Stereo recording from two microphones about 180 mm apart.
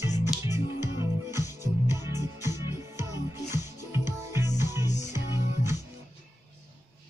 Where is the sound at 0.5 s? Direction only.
15° right (ahead or behind).